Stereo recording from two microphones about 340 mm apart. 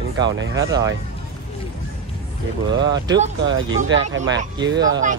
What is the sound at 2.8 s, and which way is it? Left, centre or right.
Speech, centre.